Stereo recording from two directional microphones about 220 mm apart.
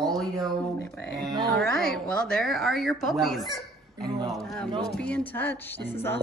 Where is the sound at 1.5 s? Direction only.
5° left (ahead or behind).